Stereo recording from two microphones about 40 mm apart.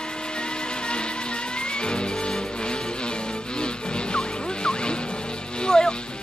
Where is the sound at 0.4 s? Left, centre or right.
Left.